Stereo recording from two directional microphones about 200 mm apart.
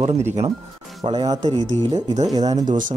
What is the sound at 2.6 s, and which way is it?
Speech, 40° right (ahead or behind).